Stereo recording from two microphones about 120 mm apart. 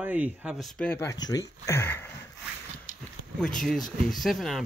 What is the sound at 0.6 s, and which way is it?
Speech, centre (ahead or behind).